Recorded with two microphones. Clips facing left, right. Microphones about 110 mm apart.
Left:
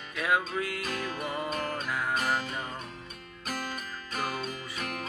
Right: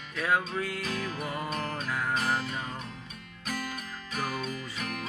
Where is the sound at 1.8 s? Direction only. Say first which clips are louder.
Even; 15° left (ahead or behind).